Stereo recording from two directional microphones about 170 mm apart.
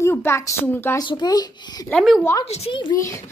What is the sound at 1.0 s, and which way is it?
Speech, 25° left (ahead or behind).